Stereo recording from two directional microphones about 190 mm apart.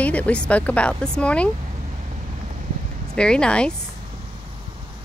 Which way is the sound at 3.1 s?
5° left (ahead or behind).